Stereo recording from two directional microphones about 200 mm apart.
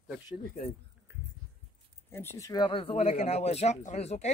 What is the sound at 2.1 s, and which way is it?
Speech, 10° left (ahead or behind).